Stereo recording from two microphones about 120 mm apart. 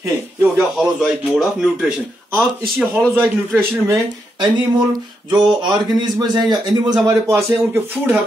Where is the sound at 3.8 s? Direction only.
25° right (ahead or behind).